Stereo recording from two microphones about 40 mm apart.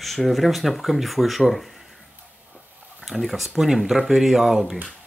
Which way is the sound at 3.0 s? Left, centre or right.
Centre.